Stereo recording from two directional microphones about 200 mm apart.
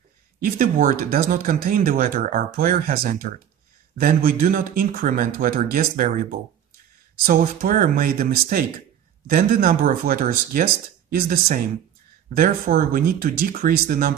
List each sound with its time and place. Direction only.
0.4 s speech: 45° right (ahead or behind)